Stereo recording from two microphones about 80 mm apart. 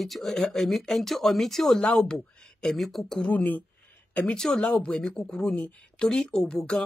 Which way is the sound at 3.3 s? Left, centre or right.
Left.